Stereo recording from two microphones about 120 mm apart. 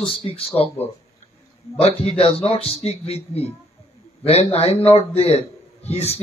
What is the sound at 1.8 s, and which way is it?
A man's voice, 60° left (ahead or behind).